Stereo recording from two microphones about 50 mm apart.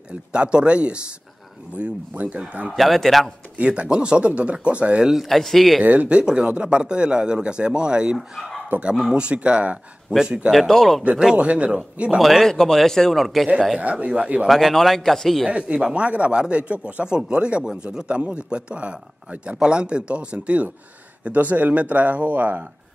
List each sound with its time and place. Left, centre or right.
0.1 s speech: right
2.7 s speech: centre
3.5 s speech: right
5.1 s speech: centre
5.8 s speech: right
8.7 s speech: right
9.1 s speech: right
10.5 s speech: centre
11.3 s speech: right
12.2 s speech: centre
13.7 s speech: right
14.5 s speech: centre
15.4 s speech: centre